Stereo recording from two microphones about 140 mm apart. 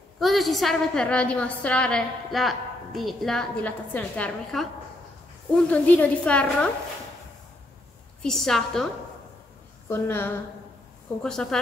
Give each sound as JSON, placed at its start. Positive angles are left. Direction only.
{"t": 0.2, "sound": "a woman's voice", "side_deg": 0}
{"t": 5.7, "sound": "a woman's voice", "side_deg": 10}
{"t": 8.2, "sound": "a woman's voice", "side_deg": 5}
{"t": 9.8, "sound": "a woman's voice", "side_deg": 15}
{"t": 11.4, "sound": "a woman's voice", "side_deg": 5}